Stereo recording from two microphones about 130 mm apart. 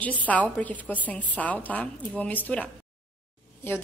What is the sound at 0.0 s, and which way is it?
A woman's voice, 10° left (ahead or behind).